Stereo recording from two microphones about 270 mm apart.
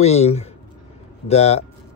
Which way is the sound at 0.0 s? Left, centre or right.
Left.